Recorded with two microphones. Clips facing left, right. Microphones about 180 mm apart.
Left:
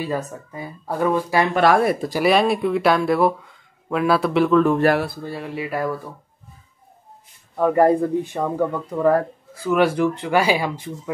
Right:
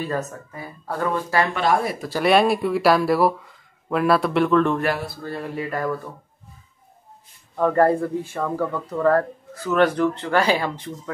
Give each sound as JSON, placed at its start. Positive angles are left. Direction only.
{"t": 0.0, "sound": "speech", "side_deg": 10}
{"t": 1.6, "sound": "speech", "side_deg": 65}
{"t": 2.2, "sound": "speech", "side_deg": 0}
{"t": 7.5, "sound": "speech", "side_deg": 10}